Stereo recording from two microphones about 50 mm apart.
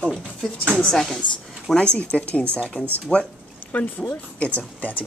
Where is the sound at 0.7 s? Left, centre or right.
Centre.